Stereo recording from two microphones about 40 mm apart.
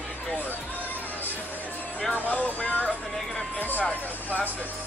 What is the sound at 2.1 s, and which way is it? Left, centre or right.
Speech, left.